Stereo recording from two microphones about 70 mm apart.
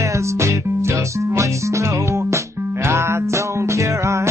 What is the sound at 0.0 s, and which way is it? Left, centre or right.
Music, right.